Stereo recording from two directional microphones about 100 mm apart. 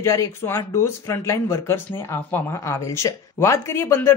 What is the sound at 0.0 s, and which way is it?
Speech, 35° left (ahead or behind).